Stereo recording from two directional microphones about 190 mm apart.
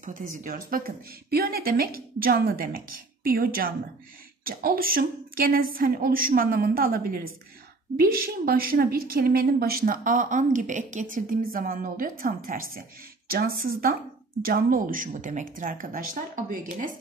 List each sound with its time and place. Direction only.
0.0 s a woman's voice: 45° right (ahead or behind)